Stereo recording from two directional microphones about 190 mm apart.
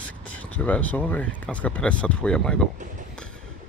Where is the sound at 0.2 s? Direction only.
5° left (ahead or behind).